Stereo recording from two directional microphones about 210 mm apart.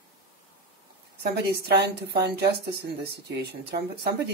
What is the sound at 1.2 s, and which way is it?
A woman's voice, 50° right (ahead or behind).